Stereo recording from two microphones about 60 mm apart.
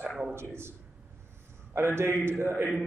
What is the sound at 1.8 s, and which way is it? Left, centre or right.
Speech, right.